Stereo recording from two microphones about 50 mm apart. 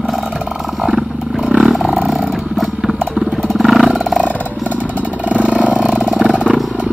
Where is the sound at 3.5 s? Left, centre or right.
Centre.